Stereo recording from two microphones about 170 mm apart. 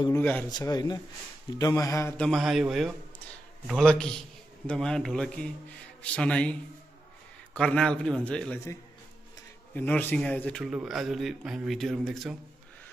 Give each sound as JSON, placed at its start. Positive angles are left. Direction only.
{"t": 0.2, "sound": "a man's voice", "side_deg": 10}
{"t": 0.5, "sound": "a man's voice", "side_deg": 25}
{"t": 7.5, "sound": "a man's voice", "side_deg": 5}
{"t": 9.8, "sound": "a man's voice", "side_deg": 10}